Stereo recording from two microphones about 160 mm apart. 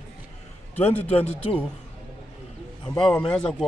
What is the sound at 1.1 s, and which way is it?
Speech, 35° left (ahead or behind).